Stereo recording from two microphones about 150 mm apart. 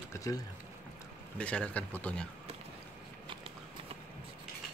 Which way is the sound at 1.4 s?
10° left (ahead or behind).